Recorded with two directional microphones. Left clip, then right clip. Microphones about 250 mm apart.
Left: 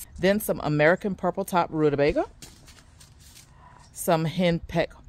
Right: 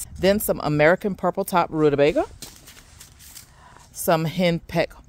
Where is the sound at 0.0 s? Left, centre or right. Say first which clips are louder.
Right 3 dB; right.